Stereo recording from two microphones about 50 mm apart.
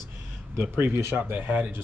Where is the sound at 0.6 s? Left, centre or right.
Right.